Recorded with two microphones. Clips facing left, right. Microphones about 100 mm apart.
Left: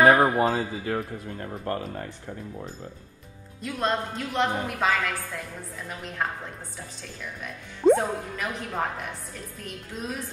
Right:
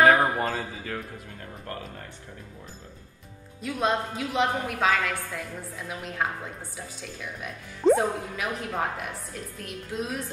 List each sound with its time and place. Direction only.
0.0 s speech: centre (ahead or behind)
1.4 s speech: 45° left (ahead or behind)
3.6 s speech: centre (ahead or behind)